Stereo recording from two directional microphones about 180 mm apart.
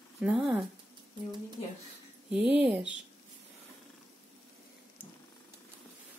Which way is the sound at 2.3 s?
5° right (ahead or behind).